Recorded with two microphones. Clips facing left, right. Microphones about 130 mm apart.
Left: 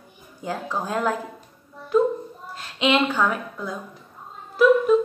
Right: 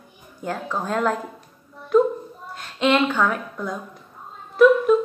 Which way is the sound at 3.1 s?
5° left (ahead or behind).